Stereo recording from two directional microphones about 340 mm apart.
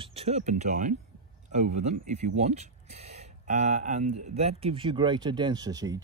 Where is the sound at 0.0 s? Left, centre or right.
Centre.